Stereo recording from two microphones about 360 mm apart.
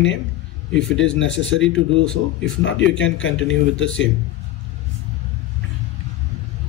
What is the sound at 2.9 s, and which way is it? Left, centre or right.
Speech, left.